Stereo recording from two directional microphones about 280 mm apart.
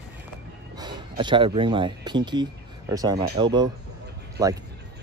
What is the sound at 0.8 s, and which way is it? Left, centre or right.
Speech, centre.